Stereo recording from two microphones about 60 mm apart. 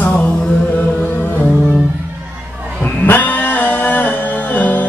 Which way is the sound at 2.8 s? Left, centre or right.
Left.